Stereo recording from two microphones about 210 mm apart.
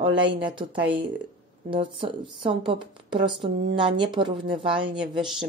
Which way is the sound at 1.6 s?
25° right (ahead or behind).